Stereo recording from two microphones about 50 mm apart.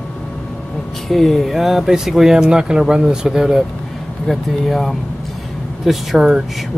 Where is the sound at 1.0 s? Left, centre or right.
Centre.